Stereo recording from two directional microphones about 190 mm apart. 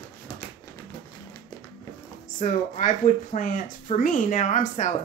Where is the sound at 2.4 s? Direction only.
40° left (ahead or behind).